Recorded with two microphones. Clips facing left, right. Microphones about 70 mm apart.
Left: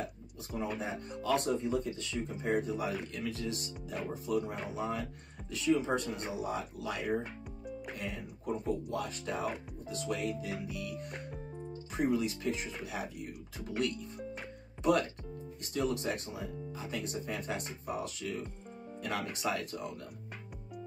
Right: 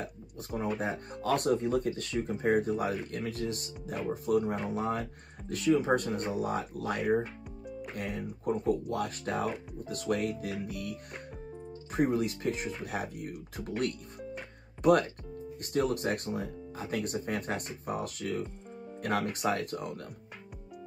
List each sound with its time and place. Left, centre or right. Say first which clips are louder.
0.5 s speech: right 4 dB; right